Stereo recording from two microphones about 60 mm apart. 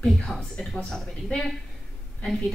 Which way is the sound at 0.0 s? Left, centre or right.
Centre.